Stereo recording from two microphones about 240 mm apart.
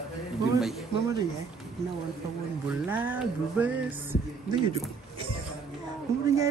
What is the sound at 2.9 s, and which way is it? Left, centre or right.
Speech, centre.